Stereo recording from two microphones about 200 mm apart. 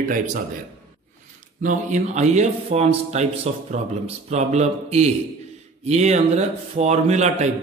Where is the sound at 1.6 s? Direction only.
40° right (ahead or behind).